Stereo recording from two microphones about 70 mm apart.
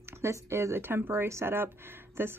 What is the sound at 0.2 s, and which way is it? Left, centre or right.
Speech, right.